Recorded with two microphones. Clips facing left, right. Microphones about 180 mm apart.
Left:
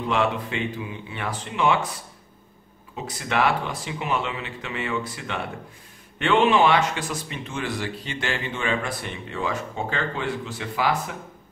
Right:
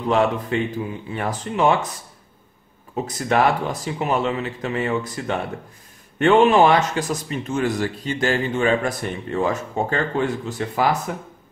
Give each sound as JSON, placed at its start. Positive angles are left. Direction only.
{"t": 0.1, "sound": "speech", "side_deg": -40}
{"t": 3.1, "sound": "speech", "side_deg": -40}